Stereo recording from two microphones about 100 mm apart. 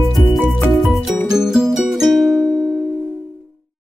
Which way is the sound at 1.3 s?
5° right (ahead or behind).